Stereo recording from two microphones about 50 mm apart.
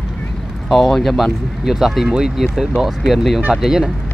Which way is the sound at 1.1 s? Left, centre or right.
Centre.